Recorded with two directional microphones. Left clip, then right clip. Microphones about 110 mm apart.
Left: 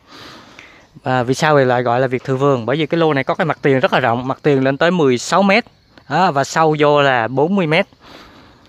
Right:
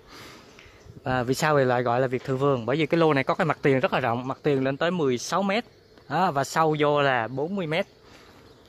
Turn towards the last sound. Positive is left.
turn(degrees=50)  # may be behind; listen again after turning